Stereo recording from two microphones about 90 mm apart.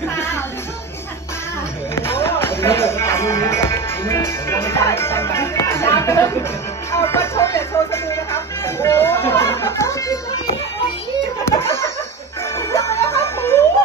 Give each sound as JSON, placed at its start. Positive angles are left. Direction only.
{"t": 0.1, "sound": "music", "side_deg": 30}
{"t": 2.0, "sound": "music", "side_deg": 30}
{"t": 11.4, "sound": "laughter", "side_deg": 30}
{"t": 12.5, "sound": "music", "side_deg": 30}